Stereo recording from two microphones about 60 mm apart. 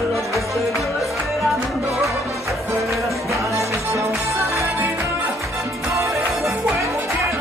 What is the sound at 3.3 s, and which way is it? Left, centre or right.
Music, right.